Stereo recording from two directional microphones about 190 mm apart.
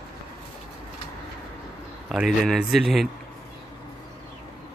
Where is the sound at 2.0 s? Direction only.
Centre (ahead or behind).